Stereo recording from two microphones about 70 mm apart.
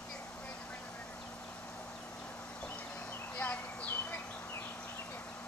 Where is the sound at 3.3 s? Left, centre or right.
Left.